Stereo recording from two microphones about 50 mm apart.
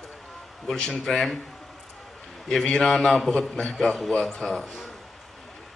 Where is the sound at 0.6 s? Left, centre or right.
Centre.